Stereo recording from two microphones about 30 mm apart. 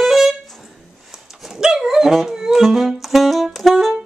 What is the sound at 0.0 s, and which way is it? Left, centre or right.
Music, centre.